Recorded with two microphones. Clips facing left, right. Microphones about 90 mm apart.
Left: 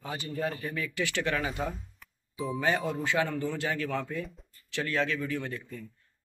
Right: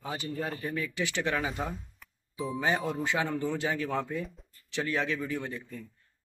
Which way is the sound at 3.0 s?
20° right (ahead or behind).